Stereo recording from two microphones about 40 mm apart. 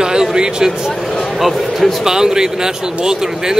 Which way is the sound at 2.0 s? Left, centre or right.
Centre.